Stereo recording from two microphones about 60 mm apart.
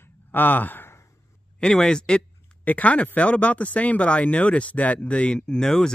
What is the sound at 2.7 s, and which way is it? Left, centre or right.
Speech, left.